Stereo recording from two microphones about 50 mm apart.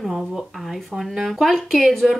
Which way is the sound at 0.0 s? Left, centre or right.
Centre.